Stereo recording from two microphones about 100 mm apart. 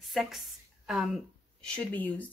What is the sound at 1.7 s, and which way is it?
Speech, 15° left (ahead or behind).